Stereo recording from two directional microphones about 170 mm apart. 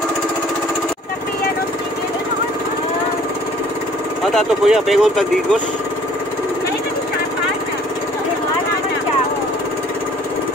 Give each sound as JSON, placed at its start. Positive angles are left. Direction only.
{"t": 4.3, "sound": "speech", "side_deg": 0}